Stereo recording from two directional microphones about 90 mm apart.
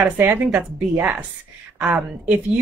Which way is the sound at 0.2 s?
20° right (ahead or behind).